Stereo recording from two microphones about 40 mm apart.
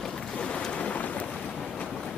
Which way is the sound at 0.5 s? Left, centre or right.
Left.